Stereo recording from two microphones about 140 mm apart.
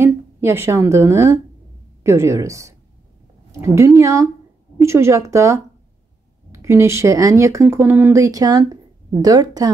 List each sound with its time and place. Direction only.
0.0 s speech: 15° right (ahead or behind)